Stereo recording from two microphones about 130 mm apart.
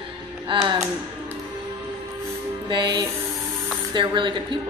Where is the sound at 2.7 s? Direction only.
35° right (ahead or behind).